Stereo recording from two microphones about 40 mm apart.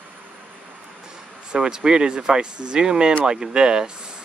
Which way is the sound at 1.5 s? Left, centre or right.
Right.